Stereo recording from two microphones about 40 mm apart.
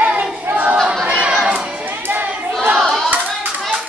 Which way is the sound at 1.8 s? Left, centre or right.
Right.